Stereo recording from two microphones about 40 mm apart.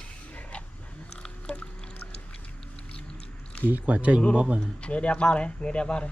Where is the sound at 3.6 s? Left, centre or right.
Right.